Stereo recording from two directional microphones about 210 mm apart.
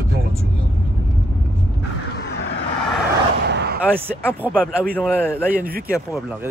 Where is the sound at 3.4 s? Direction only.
50° right (ahead or behind).